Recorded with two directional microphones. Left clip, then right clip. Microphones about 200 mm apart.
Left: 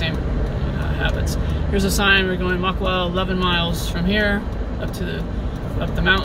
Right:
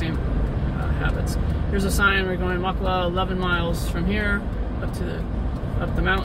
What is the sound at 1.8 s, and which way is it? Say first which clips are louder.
Speech: left 3 dB; 5° left (ahead or behind).